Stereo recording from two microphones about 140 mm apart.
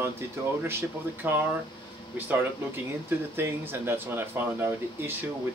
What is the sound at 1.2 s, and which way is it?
Speech, 15° right (ahead or behind).